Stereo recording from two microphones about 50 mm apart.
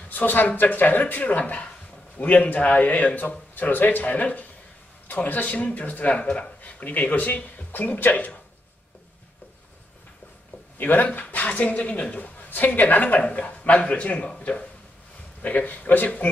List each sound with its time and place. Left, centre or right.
0.1 s a man's voice: left
10.8 s a man's voice: left